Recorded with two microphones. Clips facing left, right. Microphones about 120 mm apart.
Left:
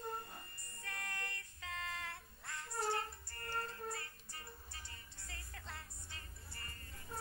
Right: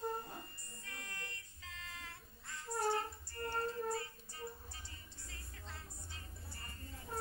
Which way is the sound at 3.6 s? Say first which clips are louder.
Right 7 dB; 65° left (ahead or behind).